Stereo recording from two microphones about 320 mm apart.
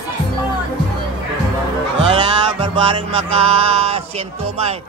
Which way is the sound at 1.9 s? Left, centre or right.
Centre.